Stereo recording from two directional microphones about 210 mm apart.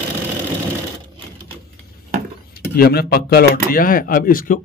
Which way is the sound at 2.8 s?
50° left (ahead or behind).